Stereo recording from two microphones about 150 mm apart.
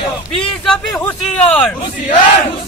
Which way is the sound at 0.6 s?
5° left (ahead or behind).